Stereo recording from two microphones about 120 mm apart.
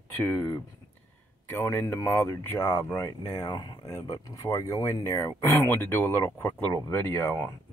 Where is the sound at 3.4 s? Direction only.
35° left (ahead or behind).